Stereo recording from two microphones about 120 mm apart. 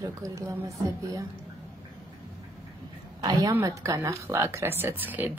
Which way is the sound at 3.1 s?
35° right (ahead or behind).